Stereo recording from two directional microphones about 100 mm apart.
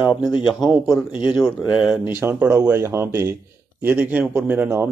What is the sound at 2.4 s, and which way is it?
Speech, 20° right (ahead or behind).